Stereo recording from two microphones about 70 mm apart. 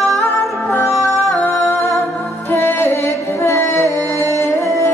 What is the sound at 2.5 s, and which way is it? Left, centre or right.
Music, left.